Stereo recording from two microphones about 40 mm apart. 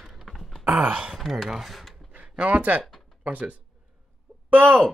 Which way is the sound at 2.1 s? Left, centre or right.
Right.